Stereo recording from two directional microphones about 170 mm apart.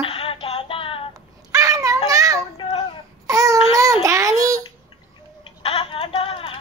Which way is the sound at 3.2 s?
20° right (ahead or behind).